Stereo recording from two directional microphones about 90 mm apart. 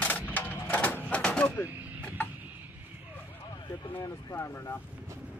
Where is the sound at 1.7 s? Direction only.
20° right (ahead or behind).